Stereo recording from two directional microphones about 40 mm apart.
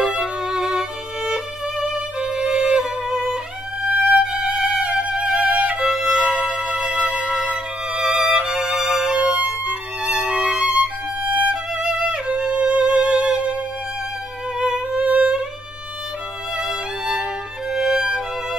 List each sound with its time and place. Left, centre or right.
0.0 s violin: centre
4.1 s music: centre
5.8 s music: centre
9.7 s violin: right
10.2 s music: centre
10.6 s music: right
15.0 s music: right
17.0 s music: centre